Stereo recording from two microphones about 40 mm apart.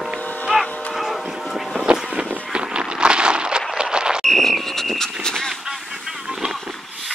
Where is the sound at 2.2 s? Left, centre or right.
Right.